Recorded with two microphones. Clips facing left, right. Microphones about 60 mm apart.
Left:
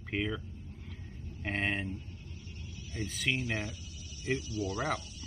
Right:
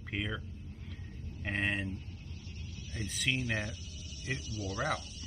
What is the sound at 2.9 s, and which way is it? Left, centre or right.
Speech, centre.